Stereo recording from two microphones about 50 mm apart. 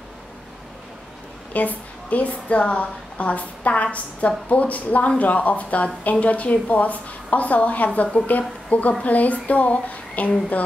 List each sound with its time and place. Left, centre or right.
1.5 s a woman's voice: left